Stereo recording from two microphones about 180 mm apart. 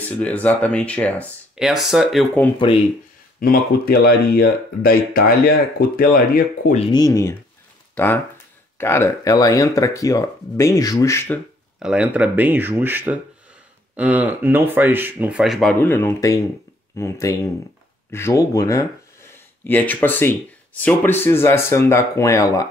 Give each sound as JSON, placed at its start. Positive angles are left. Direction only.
{"t": 0.2, "sound": "speech", "side_deg": 10}
{"t": 1.5, "sound": "speech", "side_deg": 0}
{"t": 3.3, "sound": "speech", "side_deg": 55}
{"t": 6.9, "sound": "speech", "side_deg": 20}
{"t": 11.8, "sound": "speech", "side_deg": -5}
{"t": 15.8, "sound": "speech", "side_deg": 10}